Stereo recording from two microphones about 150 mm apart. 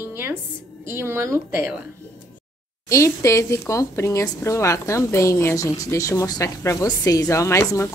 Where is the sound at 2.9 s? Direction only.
20° left (ahead or behind).